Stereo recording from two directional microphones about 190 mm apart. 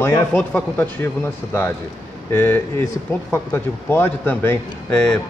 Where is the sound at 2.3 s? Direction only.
10° left (ahead or behind).